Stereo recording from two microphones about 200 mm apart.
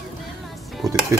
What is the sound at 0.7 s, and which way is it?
Dishes, centre (ahead or behind).